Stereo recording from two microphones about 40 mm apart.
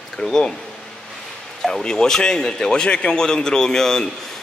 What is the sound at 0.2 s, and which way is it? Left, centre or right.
Speech, centre.